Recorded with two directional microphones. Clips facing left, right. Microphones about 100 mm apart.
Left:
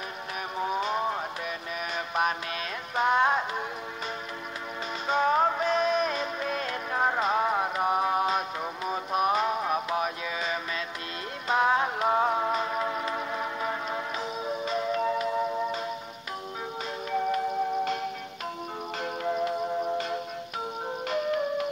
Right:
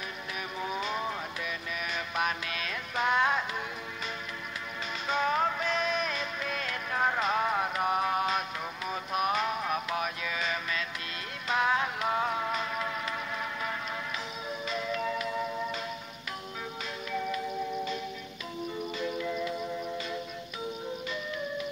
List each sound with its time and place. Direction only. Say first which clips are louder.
0.6 s a sound: left 5 dB; 40° left (ahead or behind)
2.0 s music: left 4 dB; 35° left (ahead or behind)
5.0 s music: left 4 dB; 35° left (ahead or behind)
17.1 s music: left 6 dB; 45° left (ahead or behind)
18.9 s music: left 5 dB; 50° left (ahead or behind)
20.8 s music: left 7 dB; 60° left (ahead or behind)